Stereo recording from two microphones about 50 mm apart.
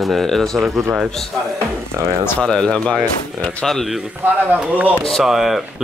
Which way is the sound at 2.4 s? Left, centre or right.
Centre.